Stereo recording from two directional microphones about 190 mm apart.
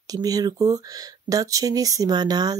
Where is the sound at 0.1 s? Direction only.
20° right (ahead or behind).